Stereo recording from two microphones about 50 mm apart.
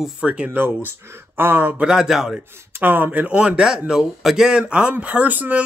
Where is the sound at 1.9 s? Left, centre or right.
Centre.